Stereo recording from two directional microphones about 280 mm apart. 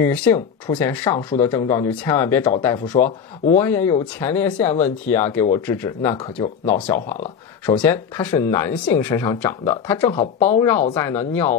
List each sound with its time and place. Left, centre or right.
0.0 s speech: centre